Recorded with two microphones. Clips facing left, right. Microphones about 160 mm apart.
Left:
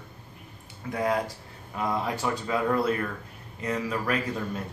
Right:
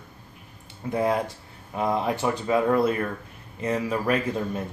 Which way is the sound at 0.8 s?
25° right (ahead or behind).